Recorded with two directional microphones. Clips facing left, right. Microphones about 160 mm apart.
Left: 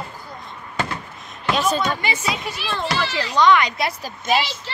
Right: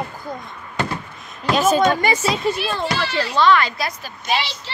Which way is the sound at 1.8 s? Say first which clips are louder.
Right 6 dB; 45° right (ahead or behind).